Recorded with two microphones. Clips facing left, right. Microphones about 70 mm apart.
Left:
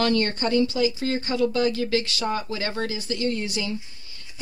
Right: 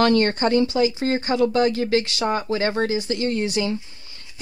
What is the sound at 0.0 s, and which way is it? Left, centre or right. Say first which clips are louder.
Speech: right 5 dB; right.